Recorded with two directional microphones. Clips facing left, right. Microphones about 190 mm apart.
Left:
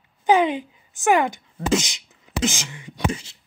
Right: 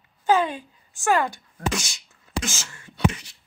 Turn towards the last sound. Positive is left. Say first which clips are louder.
# left 9 dB
turn(degrees=25)  # may be behind; listen again after turning